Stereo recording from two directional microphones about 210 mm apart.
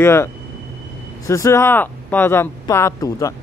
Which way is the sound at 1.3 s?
15° left (ahead or behind).